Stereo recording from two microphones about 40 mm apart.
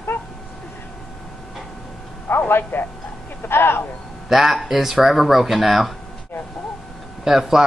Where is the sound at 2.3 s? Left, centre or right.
Left.